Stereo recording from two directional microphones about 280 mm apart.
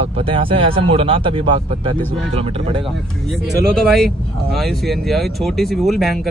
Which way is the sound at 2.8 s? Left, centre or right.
Centre.